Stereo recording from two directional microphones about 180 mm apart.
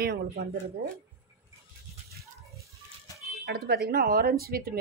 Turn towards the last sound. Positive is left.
turn(degrees=-55)  # may be behind; listen again after turning